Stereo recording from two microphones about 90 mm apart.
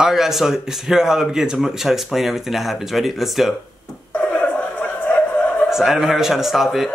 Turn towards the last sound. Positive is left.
turn(degrees=-5)  # may be behind; listen again after turning